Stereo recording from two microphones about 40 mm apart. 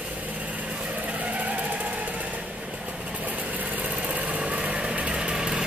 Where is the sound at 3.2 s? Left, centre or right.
Right.